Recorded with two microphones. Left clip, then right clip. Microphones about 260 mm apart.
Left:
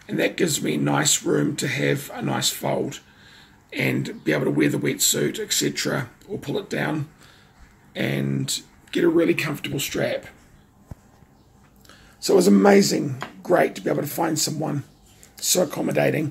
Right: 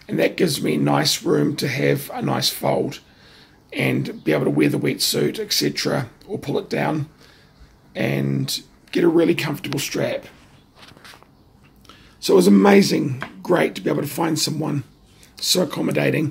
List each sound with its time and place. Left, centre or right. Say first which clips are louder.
0.0 s speech: right 3 dB; centre
12.4 s speech: right 2 dB; centre